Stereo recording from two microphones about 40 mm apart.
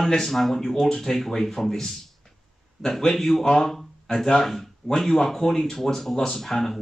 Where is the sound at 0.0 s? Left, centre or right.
Centre.